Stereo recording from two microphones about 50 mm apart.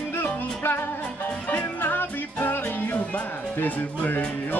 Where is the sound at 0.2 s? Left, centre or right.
Left.